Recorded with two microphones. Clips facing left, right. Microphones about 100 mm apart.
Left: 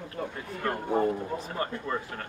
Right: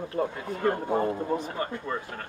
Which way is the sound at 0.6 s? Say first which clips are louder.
Right 1 dB; 25° right (ahead or behind).